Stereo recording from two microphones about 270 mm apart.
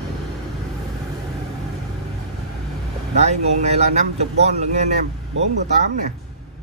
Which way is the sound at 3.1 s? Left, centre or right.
Right.